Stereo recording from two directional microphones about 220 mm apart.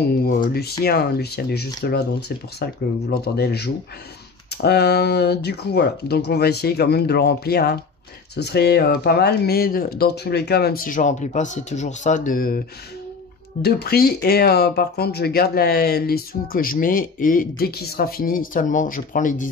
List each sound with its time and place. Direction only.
0.0 s speech: 45° left (ahead or behind)